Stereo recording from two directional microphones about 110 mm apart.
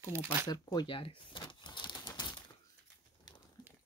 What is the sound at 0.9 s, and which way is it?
Bird, 50° left (ahead or behind).